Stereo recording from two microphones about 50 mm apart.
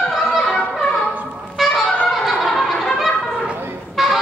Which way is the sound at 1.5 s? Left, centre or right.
Centre.